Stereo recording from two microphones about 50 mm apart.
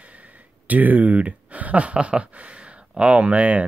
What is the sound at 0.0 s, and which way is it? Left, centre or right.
Speech, right.